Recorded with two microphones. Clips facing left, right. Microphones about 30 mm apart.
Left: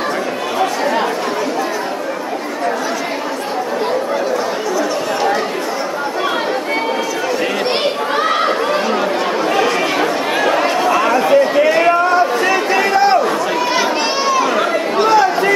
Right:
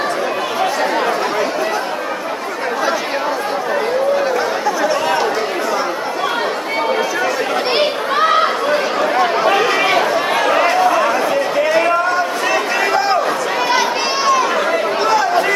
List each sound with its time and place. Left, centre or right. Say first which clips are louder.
7.7 s a sound: right 1 dB; centre
9.2 s chatter: right 2 dB; centre
10.3 s chatter: right 1 dB; centre